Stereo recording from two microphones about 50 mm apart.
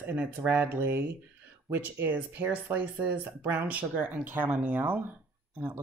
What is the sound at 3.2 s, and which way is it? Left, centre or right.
Speech, right.